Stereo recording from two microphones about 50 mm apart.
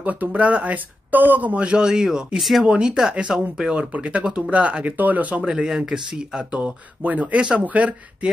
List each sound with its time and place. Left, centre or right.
0.0 s speech: right; by 2.6 s centre
2.6 s speech: centre
3.7 s speech: right
5.4 s speech: centre
6.5 s speech: right
7.3 s speech: centre
7.6 s speech: right